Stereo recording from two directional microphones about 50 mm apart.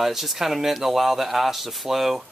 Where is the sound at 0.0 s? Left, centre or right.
Centre.